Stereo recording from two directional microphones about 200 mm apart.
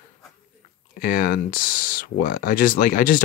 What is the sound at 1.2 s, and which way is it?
Speech, 45° left (ahead or behind).